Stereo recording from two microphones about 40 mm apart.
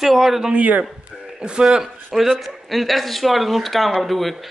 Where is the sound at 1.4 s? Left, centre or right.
Right.